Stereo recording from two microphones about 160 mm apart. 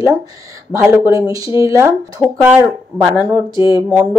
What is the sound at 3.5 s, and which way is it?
Speech, 30° left (ahead or behind).